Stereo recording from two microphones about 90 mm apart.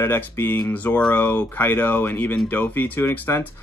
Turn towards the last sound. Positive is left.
turn(degrees=25)  # may be behind; listen again after turning